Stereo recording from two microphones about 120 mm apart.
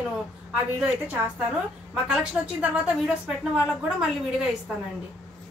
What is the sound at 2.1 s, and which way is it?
A woman's voice, 10° right (ahead or behind).